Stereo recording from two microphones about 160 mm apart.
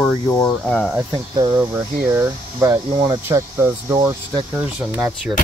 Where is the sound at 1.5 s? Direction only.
10° right (ahead or behind).